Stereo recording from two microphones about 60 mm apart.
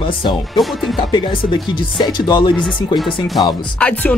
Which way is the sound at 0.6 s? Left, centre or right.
Centre.